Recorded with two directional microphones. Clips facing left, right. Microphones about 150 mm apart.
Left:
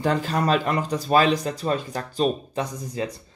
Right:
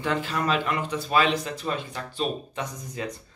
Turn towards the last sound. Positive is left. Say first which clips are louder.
# left 5 dB
turn(degrees=35)  # may be behind; listen again after turning